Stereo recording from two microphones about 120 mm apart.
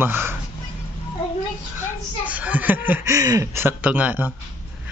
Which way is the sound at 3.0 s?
25° right (ahead or behind).